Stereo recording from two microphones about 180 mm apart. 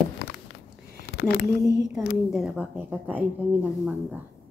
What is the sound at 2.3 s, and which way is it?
A woman's voice, 5° right (ahead or behind).